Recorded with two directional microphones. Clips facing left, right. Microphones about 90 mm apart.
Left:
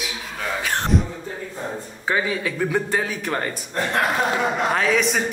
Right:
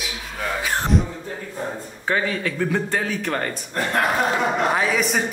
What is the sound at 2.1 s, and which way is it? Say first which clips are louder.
A man's voice: even; 10° left (ahead or behind).